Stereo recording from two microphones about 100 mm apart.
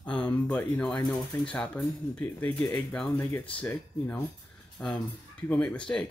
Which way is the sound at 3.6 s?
15° left (ahead or behind).